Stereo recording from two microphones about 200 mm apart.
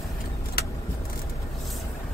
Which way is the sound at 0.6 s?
50° left (ahead or behind).